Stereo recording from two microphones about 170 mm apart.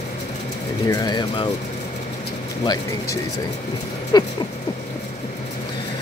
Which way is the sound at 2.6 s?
25° left (ahead or behind).